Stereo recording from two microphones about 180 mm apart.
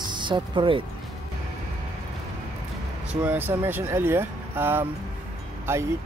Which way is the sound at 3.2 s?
10° right (ahead or behind).